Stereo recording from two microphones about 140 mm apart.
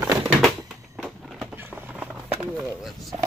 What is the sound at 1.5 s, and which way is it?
Vehicle, 15° right (ahead or behind).